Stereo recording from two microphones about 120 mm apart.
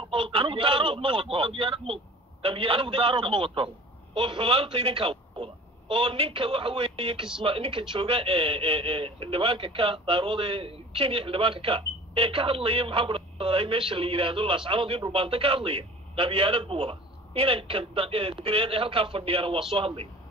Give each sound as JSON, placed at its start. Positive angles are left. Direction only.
{"t": 0.1, "sound": "a man's voice", "side_deg": -45}